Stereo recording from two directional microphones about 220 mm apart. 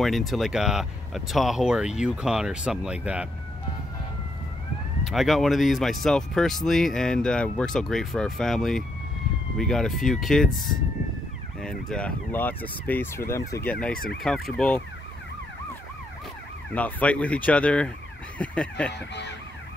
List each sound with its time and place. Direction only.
0.0 s speech: centre (ahead or behind)
5.0 s speech: centre (ahead or behind)
11.6 s speech: 5° left (ahead or behind)
13.9 s emergency vehicle: 40° left (ahead or behind)
14.2 s speech: centre (ahead or behind)
16.7 s speech: 5° left (ahead or behind)